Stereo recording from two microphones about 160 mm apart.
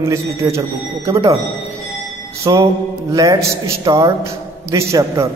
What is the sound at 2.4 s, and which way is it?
A man's voice, 20° right (ahead or behind).